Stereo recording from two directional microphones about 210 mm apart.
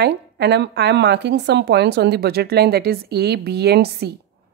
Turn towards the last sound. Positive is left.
turn(degrees=-50)  # may be behind; listen again after turning